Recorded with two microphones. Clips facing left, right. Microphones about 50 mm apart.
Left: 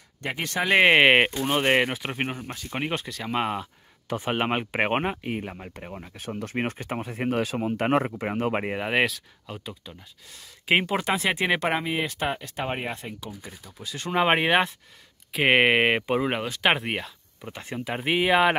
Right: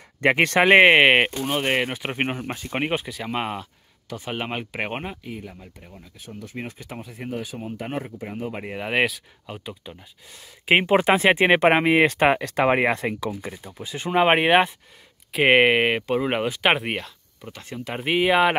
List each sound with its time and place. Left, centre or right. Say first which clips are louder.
0.2 s speech: right 10 dB; right
0.8 s speech: right 2 dB; centre
2.1 s speech: right 4 dB; right
2.8 s speech: right 3 dB; centre
4.1 s speech: left 4 dB; left
7.2 s speech: left 5 dB; left
8.7 s speech: right 1 dB; centre
10.8 s speech: right 7 dB; right
11.8 s speech: right 10 dB; right
12.4 s speech: right 10 dB; right
13.3 s speech: right 8 dB; right; by 16.3 s centre
16.3 s speech: right 3 dB; centre
17.5 s speech: left 1 dB; left
17.8 s speech: right 2 dB; centre